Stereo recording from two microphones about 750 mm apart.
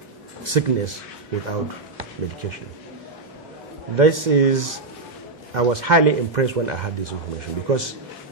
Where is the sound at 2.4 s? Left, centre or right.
Right.